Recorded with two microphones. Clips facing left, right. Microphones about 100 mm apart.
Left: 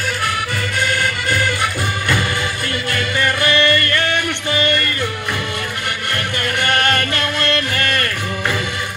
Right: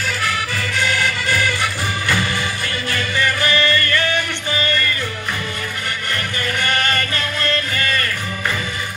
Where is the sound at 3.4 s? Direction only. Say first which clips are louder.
Left 2 dB; 55° left (ahead or behind).